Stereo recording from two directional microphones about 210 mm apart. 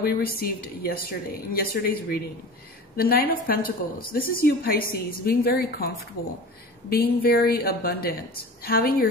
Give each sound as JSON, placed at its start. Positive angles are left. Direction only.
{"t": 0.0, "sound": "a woman's voice", "side_deg": 45}